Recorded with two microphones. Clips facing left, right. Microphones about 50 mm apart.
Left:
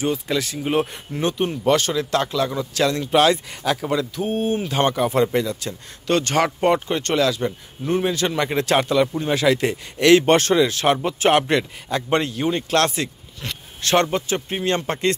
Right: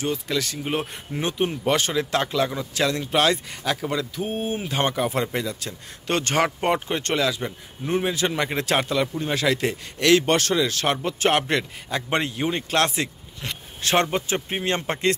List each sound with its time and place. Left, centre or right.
0.0 s speech: centre
1.1 s speech: centre
1.7 s speech: right; by 5.8 s centre
6.0 s speech: right; by 9.8 s centre
9.9 s speech: centre
10.2 s speech: left
10.7 s speech: centre
11.9 s speech: centre